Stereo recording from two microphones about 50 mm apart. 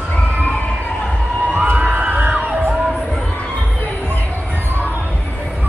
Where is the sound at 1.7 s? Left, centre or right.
Right.